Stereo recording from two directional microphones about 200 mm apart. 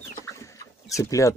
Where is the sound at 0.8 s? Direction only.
15° left (ahead or behind).